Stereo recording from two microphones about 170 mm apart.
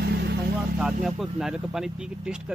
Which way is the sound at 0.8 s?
Centre (ahead or behind).